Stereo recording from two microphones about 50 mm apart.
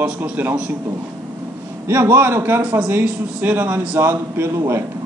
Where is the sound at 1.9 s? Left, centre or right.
Right.